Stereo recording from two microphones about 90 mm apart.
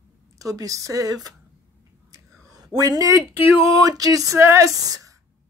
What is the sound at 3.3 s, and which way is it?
Speech, 25° right (ahead or behind).